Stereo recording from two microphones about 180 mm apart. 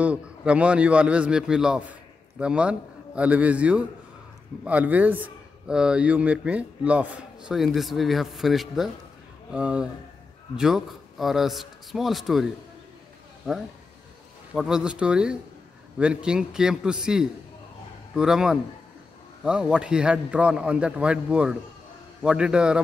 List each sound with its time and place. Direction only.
0.0 s a man's voice: 5° right (ahead or behind)
14.5 s speech: 5° right (ahead or behind)